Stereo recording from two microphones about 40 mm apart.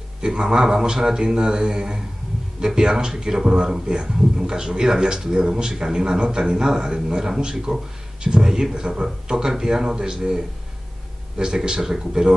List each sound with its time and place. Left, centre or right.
0.2 s a man's voice: centre
11.3 s a man's voice: centre